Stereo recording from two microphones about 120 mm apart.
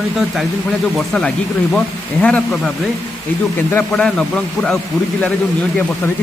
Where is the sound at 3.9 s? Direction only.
5° left (ahead or behind).